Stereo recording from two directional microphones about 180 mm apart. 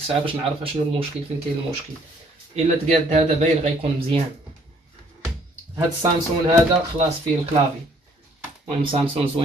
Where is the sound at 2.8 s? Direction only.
40° right (ahead or behind).